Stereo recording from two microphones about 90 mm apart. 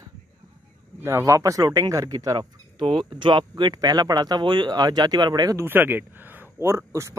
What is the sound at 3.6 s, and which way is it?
Speech, 50° right (ahead or behind).